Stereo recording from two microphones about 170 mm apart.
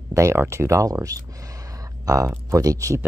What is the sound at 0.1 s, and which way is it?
Speech, 15° right (ahead or behind).